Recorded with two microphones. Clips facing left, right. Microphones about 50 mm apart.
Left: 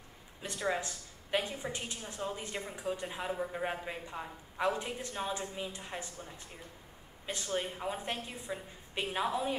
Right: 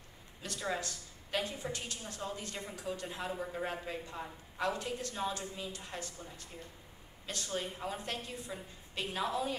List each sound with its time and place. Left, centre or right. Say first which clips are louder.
0.4 s a woman's voice: left 3 dB; left